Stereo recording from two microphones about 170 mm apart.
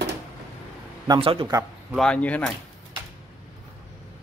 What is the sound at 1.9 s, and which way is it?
Speech, 5° left (ahead or behind).